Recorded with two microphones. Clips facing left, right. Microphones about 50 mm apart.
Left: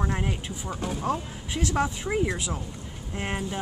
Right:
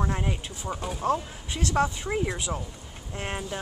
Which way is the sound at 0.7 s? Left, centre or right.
Centre.